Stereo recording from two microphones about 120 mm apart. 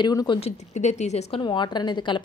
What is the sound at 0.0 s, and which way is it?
Speech, 35° left (ahead or behind).